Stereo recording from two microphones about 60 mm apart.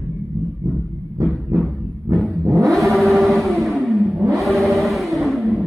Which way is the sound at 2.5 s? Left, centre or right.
Right.